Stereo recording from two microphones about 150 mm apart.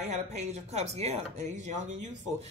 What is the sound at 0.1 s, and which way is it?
Speech, 50° right (ahead or behind).